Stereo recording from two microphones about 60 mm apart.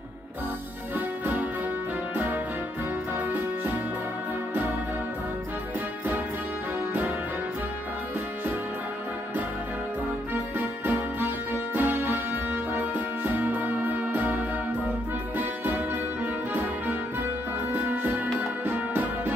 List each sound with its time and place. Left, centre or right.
0.9 s music: right
10.3 s music: right
18.0 s music: right